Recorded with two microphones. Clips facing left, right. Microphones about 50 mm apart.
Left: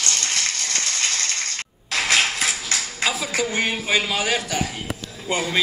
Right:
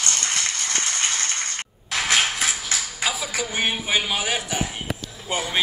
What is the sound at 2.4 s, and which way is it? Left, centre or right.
Dishes, left.